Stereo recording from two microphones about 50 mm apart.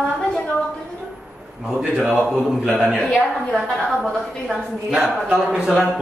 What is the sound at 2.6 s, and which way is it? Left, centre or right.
Speech, centre.